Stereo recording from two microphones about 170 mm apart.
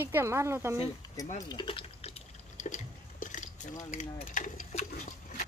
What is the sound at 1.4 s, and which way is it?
Speech, 25° left (ahead or behind).